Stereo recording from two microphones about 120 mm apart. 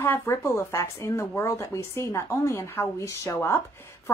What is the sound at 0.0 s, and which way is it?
A woman's voice, 20° left (ahead or behind).